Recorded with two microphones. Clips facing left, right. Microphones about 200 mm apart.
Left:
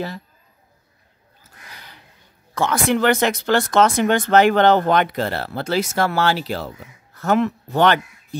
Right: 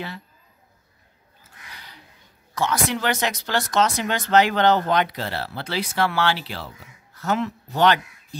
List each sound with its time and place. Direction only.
2.5 s speech: 55° left (ahead or behind)